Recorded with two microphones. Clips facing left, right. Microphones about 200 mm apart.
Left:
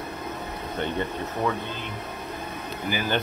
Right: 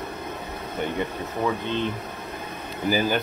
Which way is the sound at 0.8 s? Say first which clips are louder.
Right 1 dB; 10° right (ahead or behind).